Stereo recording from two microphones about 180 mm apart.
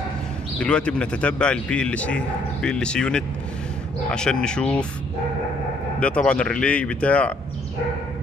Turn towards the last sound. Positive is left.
turn(degrees=5)  # may be behind; listen again after turning